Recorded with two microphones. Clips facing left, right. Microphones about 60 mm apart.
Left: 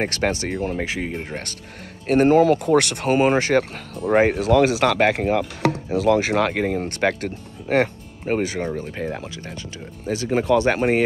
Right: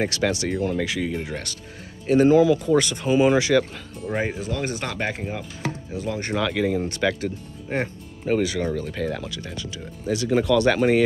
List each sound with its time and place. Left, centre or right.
0.0 s speech: left
4.1 s chopping: left
6.4 s speech: left
8.3 s speech: left